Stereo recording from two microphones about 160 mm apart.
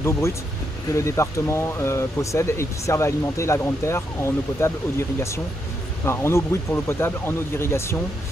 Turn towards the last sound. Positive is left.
turn(degrees=15)  # may be behind; listen again after turning